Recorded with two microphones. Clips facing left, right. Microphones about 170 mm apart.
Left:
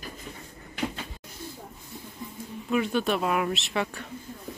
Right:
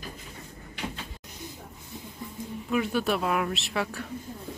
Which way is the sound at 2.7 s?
5° right (ahead or behind).